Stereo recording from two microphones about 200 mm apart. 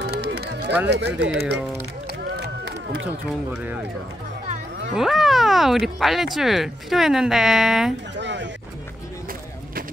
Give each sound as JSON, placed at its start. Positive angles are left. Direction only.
{"t": 0.0, "sound": "music", "side_deg": -55}
{"t": 0.8, "sound": "speech", "side_deg": -55}
{"t": 2.2, "sound": "run", "side_deg": -55}
{"t": 3.3, "sound": "speech", "side_deg": -5}
{"t": 4.9, "sound": "speech", "side_deg": 0}
{"t": 8.2, "sound": "speech", "side_deg": -60}